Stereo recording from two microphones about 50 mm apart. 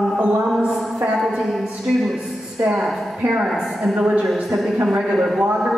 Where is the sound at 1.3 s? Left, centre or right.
Centre.